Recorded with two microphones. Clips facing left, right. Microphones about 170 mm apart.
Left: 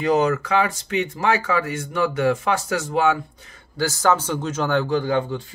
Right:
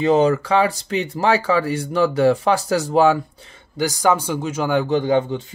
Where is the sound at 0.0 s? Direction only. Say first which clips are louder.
Right 3 dB; 30° right (ahead or behind).